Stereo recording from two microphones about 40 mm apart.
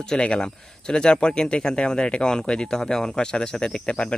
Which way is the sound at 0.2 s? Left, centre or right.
Left.